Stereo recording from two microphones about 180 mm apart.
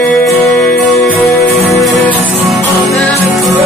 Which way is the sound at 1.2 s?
15° left (ahead or behind).